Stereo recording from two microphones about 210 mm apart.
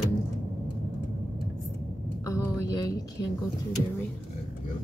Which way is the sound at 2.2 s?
15° left (ahead or behind).